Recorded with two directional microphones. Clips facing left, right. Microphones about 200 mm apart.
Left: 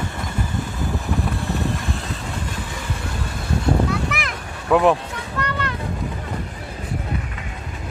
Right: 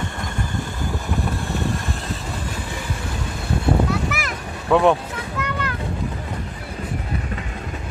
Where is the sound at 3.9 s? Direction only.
Centre (ahead or behind).